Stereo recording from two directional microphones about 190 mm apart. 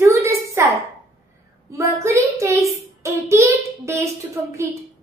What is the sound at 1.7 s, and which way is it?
Child singing, 15° right (ahead or behind).